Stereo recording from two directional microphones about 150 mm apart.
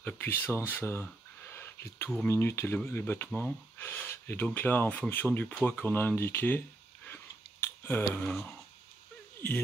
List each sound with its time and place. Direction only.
0.0 s speech: 10° left (ahead or behind)
7.6 s speech: 15° left (ahead or behind)